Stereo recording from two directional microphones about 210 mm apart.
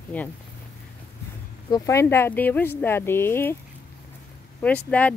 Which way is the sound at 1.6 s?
15° left (ahead or behind).